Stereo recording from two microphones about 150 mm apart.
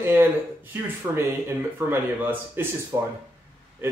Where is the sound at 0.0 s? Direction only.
15° right (ahead or behind).